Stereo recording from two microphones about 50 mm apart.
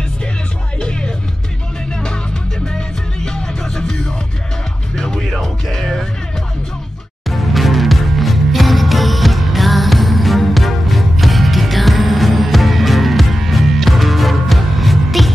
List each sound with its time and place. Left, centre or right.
0.7 s music: centre
3.3 s music: centre
7.2 s music: centre